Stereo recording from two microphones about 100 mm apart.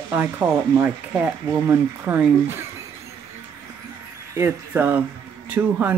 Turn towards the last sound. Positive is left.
turn(degrees=-20)  # may be behind; listen again after turning